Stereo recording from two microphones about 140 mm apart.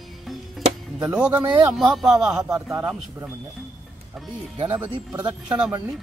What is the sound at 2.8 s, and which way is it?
Speech, 10° right (ahead or behind).